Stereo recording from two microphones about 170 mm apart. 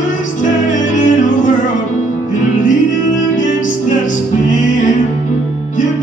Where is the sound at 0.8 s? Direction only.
45° left (ahead or behind).